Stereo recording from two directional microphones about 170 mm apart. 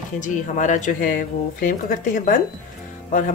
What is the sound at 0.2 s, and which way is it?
Speech, 45° left (ahead or behind).